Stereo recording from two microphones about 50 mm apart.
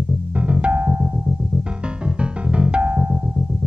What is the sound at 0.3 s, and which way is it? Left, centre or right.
Music, right.